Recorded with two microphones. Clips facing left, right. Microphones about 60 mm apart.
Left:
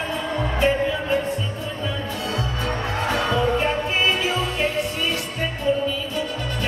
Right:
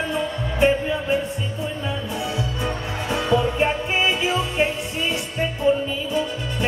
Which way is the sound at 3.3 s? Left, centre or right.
Centre.